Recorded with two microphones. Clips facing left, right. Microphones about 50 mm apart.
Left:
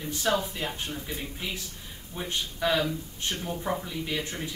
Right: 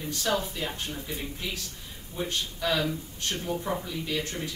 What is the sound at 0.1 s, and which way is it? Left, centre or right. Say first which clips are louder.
Speech: left 2 dB; centre.